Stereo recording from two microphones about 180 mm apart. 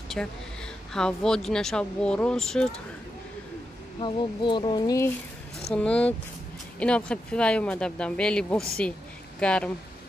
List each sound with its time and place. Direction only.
0.2 s speech: 5° left (ahead or behind)
4.0 s speech: 25° left (ahead or behind)
5.6 s speech: 5° left (ahead or behind)